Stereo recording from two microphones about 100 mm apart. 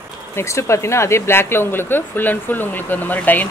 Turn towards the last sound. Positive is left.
turn(degrees=15)  # may be behind; listen again after turning